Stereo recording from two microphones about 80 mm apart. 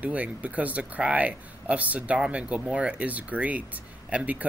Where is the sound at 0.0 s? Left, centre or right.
Centre.